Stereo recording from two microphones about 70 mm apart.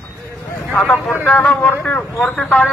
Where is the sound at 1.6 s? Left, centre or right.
Left.